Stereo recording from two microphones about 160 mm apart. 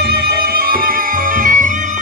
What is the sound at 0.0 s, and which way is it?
Music, 75° right (ahead or behind).